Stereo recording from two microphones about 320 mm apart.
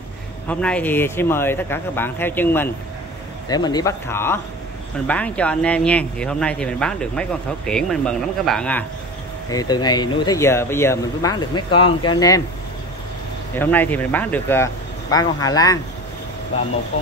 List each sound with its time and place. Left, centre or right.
0.5 s speech: centre
13.6 s speech: centre
16.9 s speech: centre